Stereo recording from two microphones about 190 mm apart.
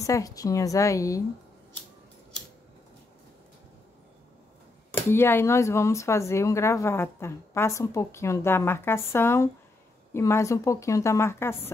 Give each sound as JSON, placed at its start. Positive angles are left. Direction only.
{"t": 0.0, "sound": "a woman's voice", "side_deg": 20}
{"t": 5.1, "sound": "a woman's voice", "side_deg": 10}